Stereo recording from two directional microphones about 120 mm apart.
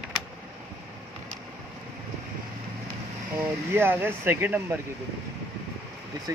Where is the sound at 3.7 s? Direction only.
15° right (ahead or behind).